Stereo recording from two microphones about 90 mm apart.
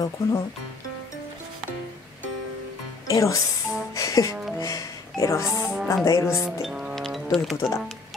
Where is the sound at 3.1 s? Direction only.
40° left (ahead or behind).